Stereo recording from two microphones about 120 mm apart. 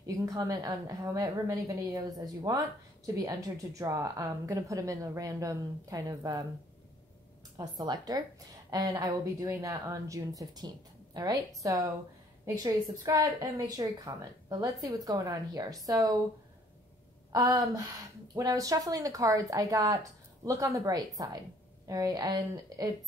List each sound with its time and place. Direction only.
0.0 s a woman's voice: 25° right (ahead or behind)
7.5 s a woman's voice: 35° right (ahead or behind)
17.3 s a woman's voice: 35° right (ahead or behind)